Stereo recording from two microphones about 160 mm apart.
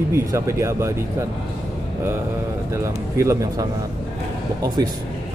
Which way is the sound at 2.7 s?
15° right (ahead or behind).